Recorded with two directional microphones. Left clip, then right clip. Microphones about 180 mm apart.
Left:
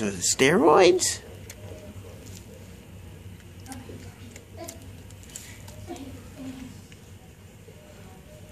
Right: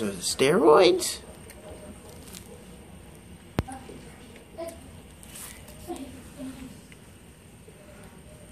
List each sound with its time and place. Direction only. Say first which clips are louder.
0.0 s speech: left 2 dB; 30° left (ahead or behind)